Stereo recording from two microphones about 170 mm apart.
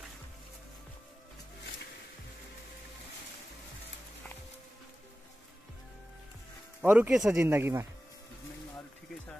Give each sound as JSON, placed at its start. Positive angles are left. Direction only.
{"t": 6.8, "sound": "speech", "side_deg": -10}